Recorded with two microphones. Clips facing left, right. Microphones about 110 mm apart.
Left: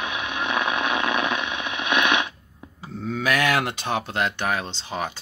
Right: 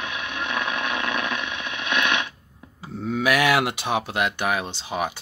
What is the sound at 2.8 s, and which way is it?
Speech, 10° right (ahead or behind).